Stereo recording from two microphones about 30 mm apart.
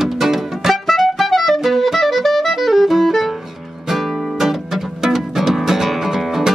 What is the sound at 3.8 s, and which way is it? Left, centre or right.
Music, centre.